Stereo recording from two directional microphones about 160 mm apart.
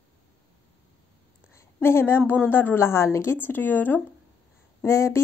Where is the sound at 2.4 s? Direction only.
10° left (ahead or behind).